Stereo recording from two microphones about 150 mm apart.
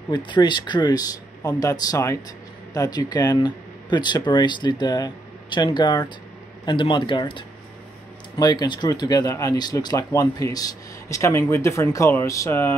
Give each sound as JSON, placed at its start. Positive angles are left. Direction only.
{"t": 0.1, "sound": "speech", "side_deg": 30}